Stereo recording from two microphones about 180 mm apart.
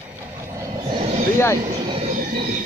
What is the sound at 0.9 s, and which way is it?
Vehicle, 30° right (ahead or behind).